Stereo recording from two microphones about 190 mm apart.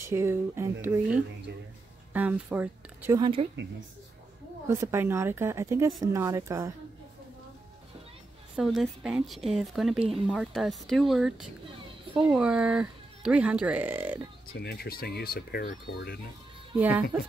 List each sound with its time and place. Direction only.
0.0 s speech: 15° right (ahead or behind)
3.2 s speech: 25° right (ahead or behind)
4.6 s speech: 15° right (ahead or behind)
8.5 s a woman's voice: centre (ahead or behind)
14.5 s speech: 55° left (ahead or behind)
16.8 s speech: 10° right (ahead or behind)